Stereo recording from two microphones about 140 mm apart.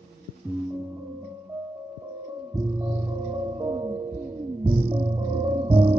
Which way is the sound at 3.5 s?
30° right (ahead or behind).